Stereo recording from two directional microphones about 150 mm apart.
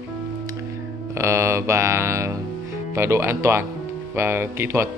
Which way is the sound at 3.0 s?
15° right (ahead or behind).